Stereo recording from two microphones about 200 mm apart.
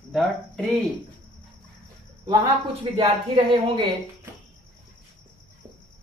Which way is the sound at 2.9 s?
30° right (ahead or behind).